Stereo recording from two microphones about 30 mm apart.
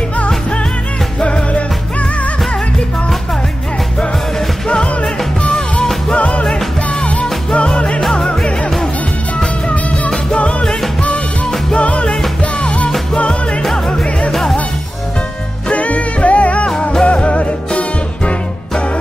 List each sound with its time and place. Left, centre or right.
1.2 s music: left
4.6 s music: left
6.1 s music: left
7.5 s music: left
9.7 s music: left
11.7 s music: left
14.3 s music: centre
15.7 s music: left